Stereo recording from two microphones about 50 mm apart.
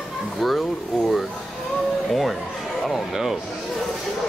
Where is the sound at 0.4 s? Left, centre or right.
Centre.